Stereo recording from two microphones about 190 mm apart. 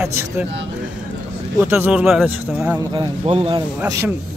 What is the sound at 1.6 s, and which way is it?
A man's voice, 10° right (ahead or behind).